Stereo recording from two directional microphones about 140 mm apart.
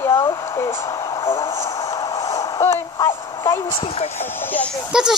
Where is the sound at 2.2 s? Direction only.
20° left (ahead or behind).